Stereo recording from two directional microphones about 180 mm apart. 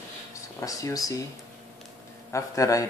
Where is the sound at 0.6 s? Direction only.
20° left (ahead or behind).